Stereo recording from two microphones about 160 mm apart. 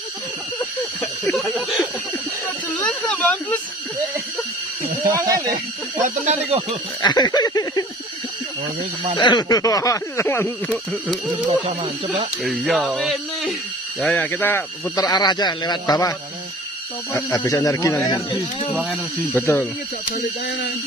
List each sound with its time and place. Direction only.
1.0 s a sound: 10° left (ahead or behind)
5.1 s speech: 20° right (ahead or behind)
5.9 s speech: 50° right (ahead or behind)
7.0 s speech: 25° left (ahead or behind)
9.1 s speech: 30° left (ahead or behind)
10.7 s a man's voice: centre (ahead or behind)
11.4 s speech: 40° right (ahead or behind)
12.7 s a man's voice: 5° right (ahead or behind); by 14.6 s 10° left (ahead or behind)
15.0 s speech: 25° left (ahead or behind)
18.3 s a man's voice: 5° right (ahead or behind)
19.4 s speech: 10° left (ahead or behind)
20.2 s speech: 90° left